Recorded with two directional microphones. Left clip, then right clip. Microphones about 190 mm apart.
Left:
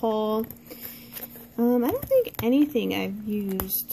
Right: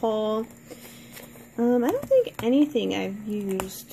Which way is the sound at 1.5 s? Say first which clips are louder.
Right 1 dB; 25° left (ahead or behind).